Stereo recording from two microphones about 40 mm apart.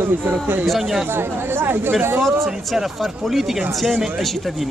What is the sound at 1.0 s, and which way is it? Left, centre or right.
Speech, right.